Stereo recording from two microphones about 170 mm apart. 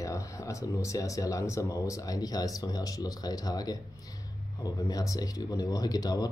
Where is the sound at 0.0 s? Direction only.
20° left (ahead or behind).